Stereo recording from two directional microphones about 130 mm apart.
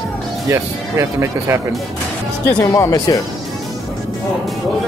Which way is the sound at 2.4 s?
20° left (ahead or behind).